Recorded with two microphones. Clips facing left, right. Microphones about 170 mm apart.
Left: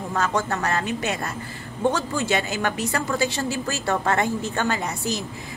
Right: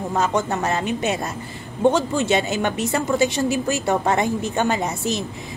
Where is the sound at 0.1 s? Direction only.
20° right (ahead or behind).